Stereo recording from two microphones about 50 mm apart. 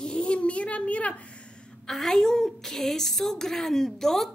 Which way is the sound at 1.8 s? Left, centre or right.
Centre.